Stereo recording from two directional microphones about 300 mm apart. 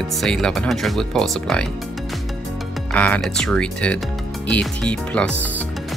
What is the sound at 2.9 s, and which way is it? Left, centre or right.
Speech, centre.